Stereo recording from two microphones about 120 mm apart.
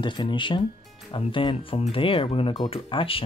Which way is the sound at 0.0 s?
40° left (ahead or behind).